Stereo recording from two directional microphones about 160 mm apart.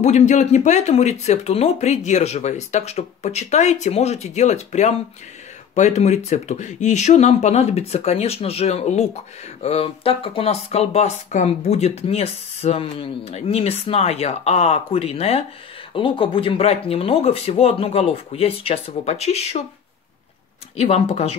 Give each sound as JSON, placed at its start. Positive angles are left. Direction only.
{"t": 0.0, "sound": "speech", "side_deg": 45}
{"t": 20.7, "sound": "speech", "side_deg": 40}